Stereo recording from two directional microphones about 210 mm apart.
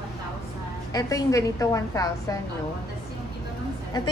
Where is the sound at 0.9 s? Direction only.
15° left (ahead or behind).